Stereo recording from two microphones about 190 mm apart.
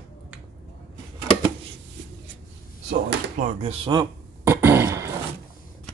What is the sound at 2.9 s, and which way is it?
Speech, 40° right (ahead or behind).